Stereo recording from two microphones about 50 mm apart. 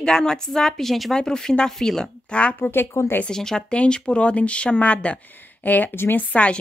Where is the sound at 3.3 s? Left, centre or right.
Centre.